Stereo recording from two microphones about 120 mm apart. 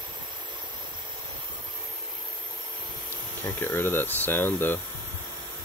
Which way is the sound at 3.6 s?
20° left (ahead or behind).